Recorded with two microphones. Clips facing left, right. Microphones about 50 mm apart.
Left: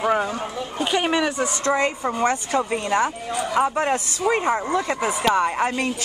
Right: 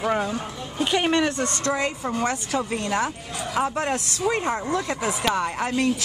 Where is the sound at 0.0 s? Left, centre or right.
Centre.